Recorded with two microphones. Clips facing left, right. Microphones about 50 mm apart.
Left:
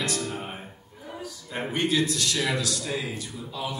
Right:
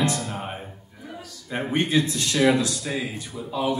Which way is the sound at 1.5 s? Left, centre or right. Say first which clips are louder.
Right 3 dB; right.